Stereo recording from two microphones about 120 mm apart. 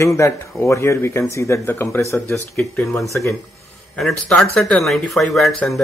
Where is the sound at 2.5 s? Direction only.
5° left (ahead or behind).